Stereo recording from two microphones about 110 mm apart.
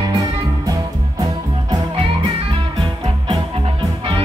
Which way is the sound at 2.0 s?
55° right (ahead or behind).